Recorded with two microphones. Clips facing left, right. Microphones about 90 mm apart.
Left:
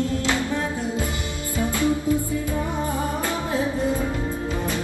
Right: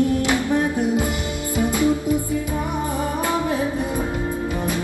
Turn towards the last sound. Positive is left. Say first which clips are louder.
# even
turn(degrees=-15)  # may be behind; listen again after turning